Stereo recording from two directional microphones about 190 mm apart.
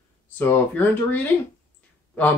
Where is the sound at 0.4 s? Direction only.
10° left (ahead or behind).